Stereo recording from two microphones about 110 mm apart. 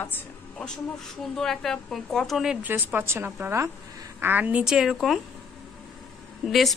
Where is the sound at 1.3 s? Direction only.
5° left (ahead or behind).